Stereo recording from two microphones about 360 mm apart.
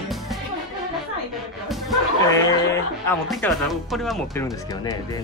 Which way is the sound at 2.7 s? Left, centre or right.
Centre.